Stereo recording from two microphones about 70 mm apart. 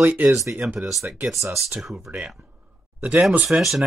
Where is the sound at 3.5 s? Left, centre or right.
Centre.